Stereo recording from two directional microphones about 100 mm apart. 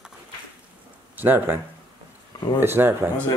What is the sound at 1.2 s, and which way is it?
Speech, 20° right (ahead or behind).